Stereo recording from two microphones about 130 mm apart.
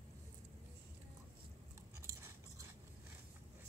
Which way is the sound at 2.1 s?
20° right (ahead or behind).